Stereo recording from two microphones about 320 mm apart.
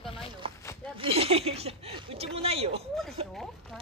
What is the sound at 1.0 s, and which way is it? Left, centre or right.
Speech, centre.